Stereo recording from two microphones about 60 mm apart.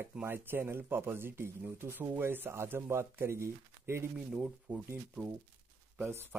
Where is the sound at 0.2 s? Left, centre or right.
Right.